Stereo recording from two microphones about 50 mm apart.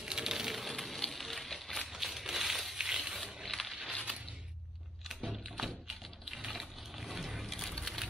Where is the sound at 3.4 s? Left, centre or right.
Centre.